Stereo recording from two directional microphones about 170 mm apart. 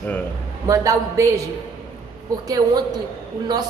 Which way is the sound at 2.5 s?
25° right (ahead or behind).